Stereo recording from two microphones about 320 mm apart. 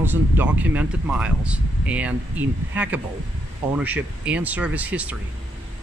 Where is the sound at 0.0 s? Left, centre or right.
Centre.